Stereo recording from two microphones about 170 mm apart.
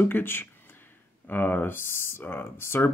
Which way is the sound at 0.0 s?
10° left (ahead or behind).